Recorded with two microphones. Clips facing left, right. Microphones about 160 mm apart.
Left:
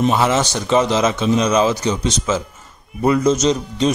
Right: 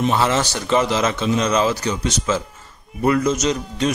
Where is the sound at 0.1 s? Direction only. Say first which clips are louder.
Left 2 dB; 15° left (ahead or behind).